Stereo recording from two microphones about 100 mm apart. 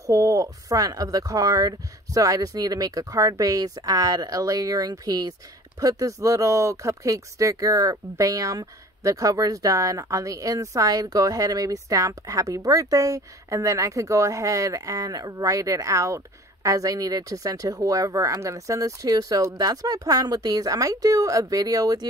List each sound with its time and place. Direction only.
0.0 s speech: 35° right (ahead or behind)